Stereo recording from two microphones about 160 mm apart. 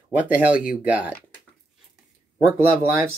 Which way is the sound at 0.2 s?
10° right (ahead or behind).